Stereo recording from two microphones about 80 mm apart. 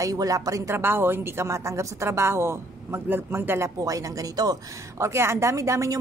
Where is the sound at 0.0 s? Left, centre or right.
Right.